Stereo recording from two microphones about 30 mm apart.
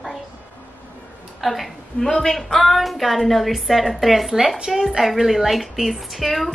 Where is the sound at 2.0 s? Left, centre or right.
Centre.